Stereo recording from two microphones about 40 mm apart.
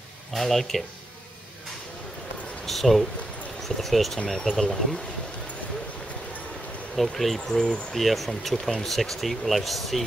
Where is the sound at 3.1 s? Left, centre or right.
Left.